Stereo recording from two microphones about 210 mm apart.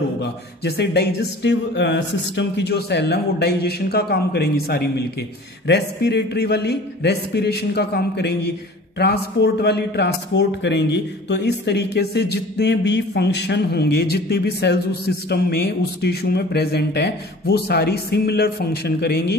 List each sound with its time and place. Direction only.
0.2 s a man's voice: 50° left (ahead or behind)